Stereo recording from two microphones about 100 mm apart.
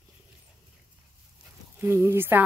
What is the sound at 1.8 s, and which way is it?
Speech, 25° right (ahead or behind).